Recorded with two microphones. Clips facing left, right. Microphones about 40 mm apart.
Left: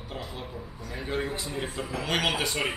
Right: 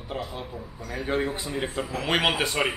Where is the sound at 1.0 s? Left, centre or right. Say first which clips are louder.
Right 4 dB; centre.